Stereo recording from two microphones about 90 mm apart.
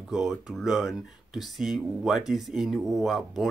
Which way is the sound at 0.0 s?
5° right (ahead or behind).